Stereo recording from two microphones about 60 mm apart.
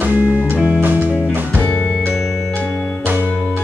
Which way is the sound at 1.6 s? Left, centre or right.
Centre.